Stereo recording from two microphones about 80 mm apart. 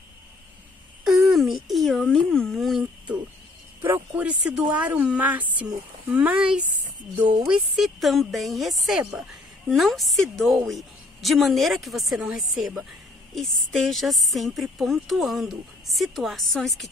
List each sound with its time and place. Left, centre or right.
1.0 s speech: centre
4.1 s a woman's voice: centre